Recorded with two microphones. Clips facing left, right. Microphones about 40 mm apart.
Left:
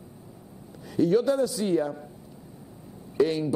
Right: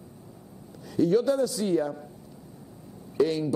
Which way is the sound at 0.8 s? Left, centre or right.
Left.